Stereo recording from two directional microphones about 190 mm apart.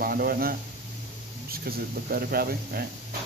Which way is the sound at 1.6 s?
50° right (ahead or behind).